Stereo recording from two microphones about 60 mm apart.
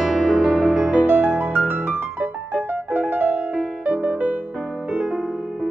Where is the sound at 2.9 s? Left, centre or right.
Right.